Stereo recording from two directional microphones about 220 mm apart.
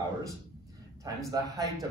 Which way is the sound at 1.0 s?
15° right (ahead or behind).